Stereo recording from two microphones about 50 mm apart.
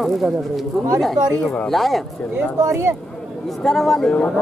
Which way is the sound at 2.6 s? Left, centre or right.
Right.